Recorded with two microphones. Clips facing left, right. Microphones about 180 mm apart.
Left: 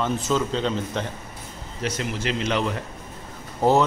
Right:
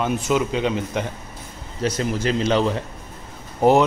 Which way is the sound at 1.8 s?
40° right (ahead or behind).